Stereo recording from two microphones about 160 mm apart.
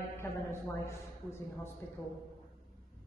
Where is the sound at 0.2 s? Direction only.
15° left (ahead or behind).